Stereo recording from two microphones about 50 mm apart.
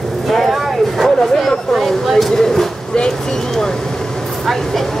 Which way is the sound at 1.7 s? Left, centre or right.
Centre.